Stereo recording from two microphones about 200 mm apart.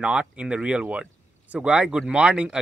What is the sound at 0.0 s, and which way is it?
Speech, 5° right (ahead or behind).